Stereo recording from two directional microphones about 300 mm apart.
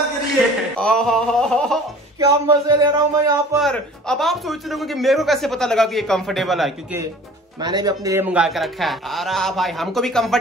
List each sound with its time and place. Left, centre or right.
0.7 s a man's voice: centre
2.1 s speech: centre
3.5 s a man's voice: centre